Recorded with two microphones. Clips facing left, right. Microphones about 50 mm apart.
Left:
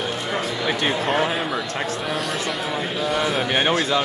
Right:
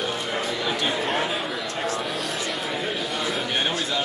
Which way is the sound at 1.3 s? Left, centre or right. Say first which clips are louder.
Left 3 dB; centre.